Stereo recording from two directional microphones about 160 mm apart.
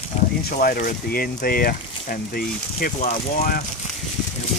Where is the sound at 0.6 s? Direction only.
60° left (ahead or behind).